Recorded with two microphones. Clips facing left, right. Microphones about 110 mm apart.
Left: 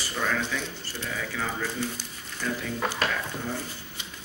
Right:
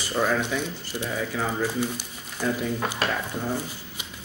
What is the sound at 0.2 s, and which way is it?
Speech, 15° right (ahead or behind).